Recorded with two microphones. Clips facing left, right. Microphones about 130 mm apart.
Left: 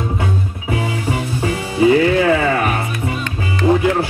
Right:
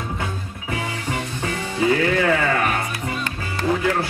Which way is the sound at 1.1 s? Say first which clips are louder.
Left 6 dB; 10° left (ahead or behind).